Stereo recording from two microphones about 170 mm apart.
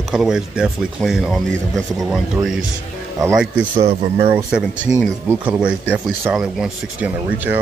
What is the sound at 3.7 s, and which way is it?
Speech, 35° right (ahead or behind).